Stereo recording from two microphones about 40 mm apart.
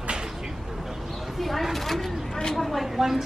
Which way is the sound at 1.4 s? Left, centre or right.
Centre.